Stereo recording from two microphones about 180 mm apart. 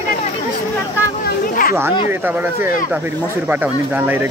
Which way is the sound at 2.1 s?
10° right (ahead or behind).